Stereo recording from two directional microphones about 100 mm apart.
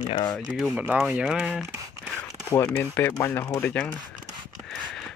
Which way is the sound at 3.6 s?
15° left (ahead or behind).